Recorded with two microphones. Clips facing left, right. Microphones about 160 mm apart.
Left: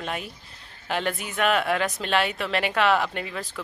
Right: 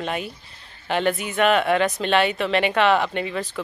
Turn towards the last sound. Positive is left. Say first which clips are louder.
# right 4 dB
turn(degrees=0)  # may be behind; listen again after turning